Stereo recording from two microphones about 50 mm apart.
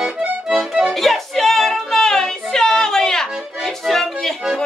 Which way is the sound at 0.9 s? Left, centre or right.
Centre.